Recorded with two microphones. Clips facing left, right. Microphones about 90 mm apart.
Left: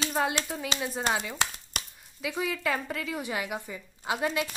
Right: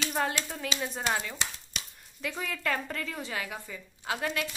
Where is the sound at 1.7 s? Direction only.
55° left (ahead or behind).